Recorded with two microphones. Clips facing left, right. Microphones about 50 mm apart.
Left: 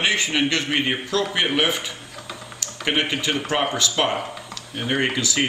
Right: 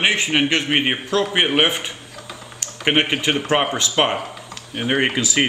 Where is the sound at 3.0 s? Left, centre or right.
Right.